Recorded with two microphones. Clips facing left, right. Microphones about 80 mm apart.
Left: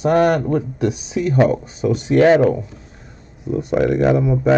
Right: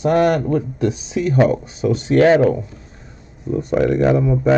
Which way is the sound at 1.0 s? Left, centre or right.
Centre.